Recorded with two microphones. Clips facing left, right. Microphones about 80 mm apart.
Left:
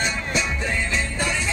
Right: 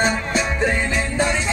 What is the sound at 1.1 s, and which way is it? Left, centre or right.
Music, right.